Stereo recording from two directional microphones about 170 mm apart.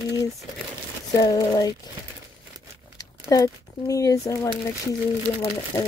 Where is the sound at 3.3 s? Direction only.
20° left (ahead or behind).